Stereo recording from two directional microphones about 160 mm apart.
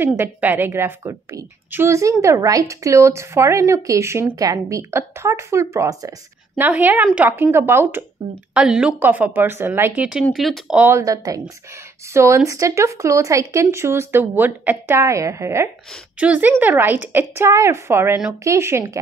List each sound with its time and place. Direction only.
0.2 s a woman's voice: 10° right (ahead or behind)
6.6 s a woman's voice: 10° right (ahead or behind)
11.0 s a woman's voice: 20° right (ahead or behind)